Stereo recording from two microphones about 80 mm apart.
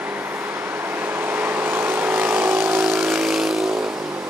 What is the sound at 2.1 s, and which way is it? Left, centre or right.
Vehicle, centre.